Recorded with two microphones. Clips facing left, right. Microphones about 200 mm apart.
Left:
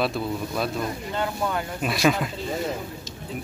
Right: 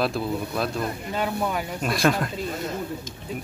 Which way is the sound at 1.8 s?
Centre (ahead or behind).